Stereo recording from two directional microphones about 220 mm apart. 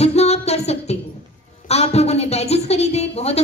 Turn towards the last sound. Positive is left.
turn(degrees=30)  # may be behind; listen again after turning